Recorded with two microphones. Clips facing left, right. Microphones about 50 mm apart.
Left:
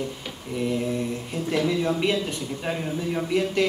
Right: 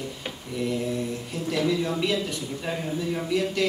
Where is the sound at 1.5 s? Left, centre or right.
Left.